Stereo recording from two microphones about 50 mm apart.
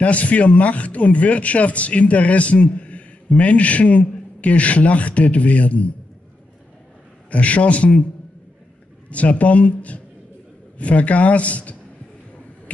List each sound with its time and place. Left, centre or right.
0.0 s speech: left
7.2 s speech: left
9.1 s speech: left